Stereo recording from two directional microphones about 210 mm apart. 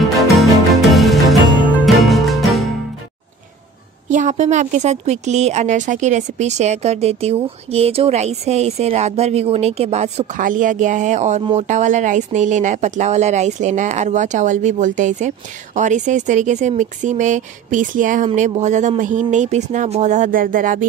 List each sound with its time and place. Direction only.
0.4 s music: centre (ahead or behind)
4.1 s a woman's voice: 35° right (ahead or behind)